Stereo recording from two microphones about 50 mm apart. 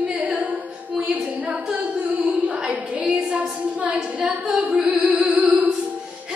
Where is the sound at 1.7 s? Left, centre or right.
Right.